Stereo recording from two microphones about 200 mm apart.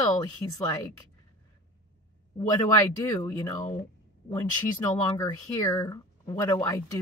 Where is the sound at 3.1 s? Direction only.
15° left (ahead or behind).